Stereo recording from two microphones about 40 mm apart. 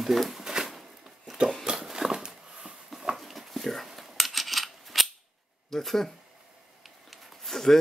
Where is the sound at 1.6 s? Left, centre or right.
Centre.